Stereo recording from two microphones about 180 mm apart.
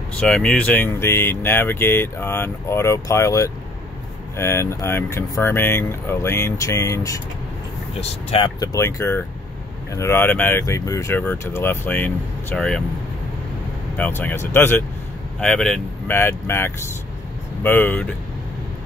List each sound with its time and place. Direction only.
0.2 s speech: 5° left (ahead or behind)
8.0 s speech: 35° left (ahead or behind)
8.5 s speech: 15° left (ahead or behind)
13.9 s speech: 10° left (ahead or behind)